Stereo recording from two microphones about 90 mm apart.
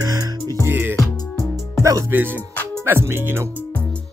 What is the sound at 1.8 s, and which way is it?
Speech, 35° right (ahead or behind).